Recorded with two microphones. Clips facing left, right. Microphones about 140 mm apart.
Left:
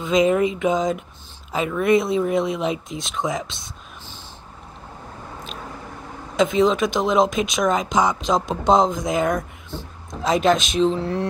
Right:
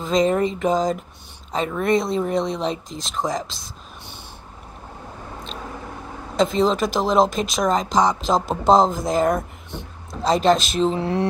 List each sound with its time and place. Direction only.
0.0 s speech: centre (ahead or behind)
6.3 s speech: centre (ahead or behind)
11.0 s mantra: 15° right (ahead or behind)